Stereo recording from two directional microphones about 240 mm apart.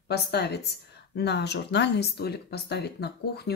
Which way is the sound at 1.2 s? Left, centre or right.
Left.